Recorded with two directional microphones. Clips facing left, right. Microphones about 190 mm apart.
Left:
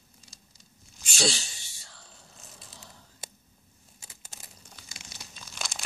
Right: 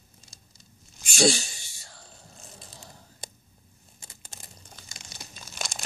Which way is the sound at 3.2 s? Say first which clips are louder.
Right 2 dB; 5° left (ahead or behind).